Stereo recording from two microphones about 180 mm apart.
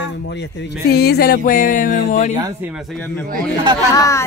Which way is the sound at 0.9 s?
65° left (ahead or behind).